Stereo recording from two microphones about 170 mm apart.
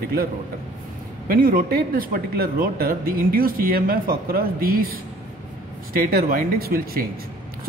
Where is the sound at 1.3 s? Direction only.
60° right (ahead or behind).